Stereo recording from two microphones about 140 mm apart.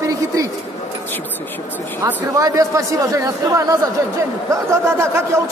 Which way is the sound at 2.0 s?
25° right (ahead or behind).